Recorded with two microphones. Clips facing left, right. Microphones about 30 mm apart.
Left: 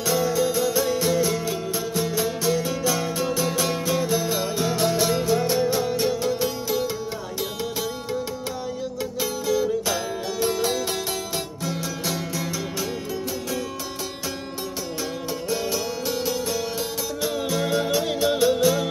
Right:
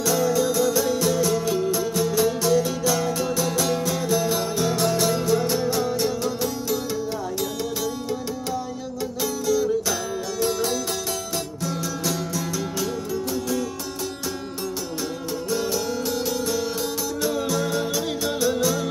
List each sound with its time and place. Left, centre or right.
0.0 s music: left
4.2 s music: centre
9.2 s music: left
15.5 s music: centre